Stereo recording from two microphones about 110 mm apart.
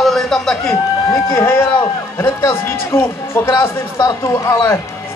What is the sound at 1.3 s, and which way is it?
A man's voice, 25° left (ahead or behind).